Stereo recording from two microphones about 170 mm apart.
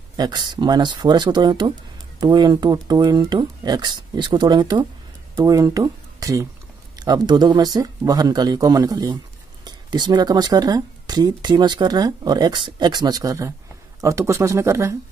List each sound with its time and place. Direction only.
0.1 s speech: 25° right (ahead or behind)